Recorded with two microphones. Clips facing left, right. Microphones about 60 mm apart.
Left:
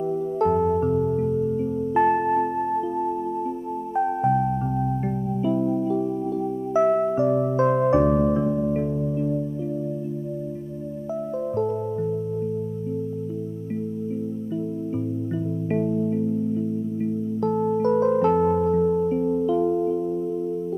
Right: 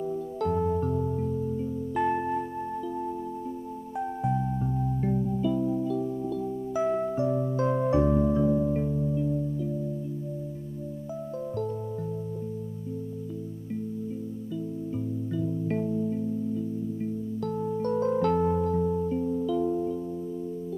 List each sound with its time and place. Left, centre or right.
0.1 s music: left
15.7 s music: left